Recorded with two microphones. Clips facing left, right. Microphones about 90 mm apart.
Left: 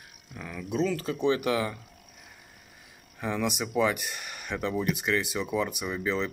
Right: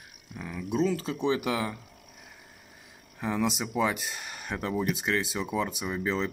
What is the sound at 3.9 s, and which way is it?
Speech, 25° right (ahead or behind).